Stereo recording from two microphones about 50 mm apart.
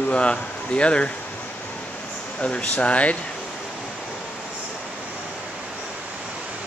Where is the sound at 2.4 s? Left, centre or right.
Left.